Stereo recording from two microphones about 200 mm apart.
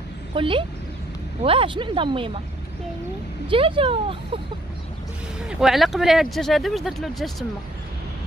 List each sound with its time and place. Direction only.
0.3 s speech: 25° right (ahead or behind)
3.4 s speech: 25° right (ahead or behind)
5.5 s speech: centre (ahead or behind)